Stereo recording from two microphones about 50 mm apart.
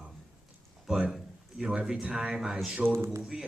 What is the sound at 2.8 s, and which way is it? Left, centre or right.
Speech, right.